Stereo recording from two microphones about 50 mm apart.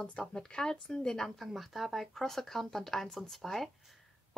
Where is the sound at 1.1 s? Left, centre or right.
Centre.